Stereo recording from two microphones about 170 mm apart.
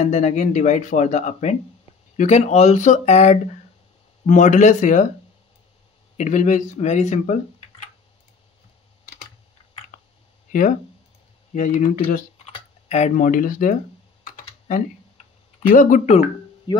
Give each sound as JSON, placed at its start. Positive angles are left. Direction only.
{"t": 0.0, "sound": "speech", "side_deg": 40}
{"t": 6.1, "sound": "speech", "side_deg": 45}
{"t": 10.5, "sound": "speech", "side_deg": 50}
{"t": 15.6, "sound": "speech", "side_deg": 50}
{"t": 16.7, "sound": "speech", "side_deg": 25}